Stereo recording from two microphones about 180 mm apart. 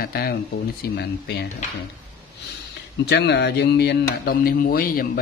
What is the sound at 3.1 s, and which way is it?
Speech, 65° left (ahead or behind).